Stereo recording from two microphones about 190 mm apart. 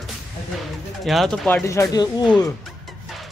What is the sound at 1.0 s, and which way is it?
Speech, centre (ahead or behind).